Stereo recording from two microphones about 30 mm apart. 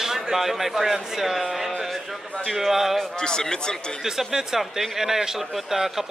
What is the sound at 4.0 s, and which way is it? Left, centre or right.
Speech, centre.